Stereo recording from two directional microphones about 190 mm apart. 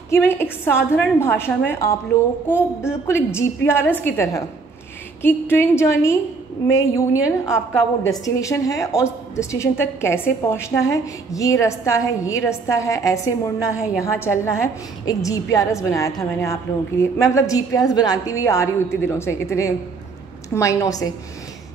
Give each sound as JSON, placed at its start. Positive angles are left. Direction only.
{"t": 0.1, "sound": "a woman's voice", "side_deg": 10}
{"t": 13.7, "sound": "a woman's voice", "side_deg": -5}
{"t": 14.2, "sound": "a woman's voice", "side_deg": 15}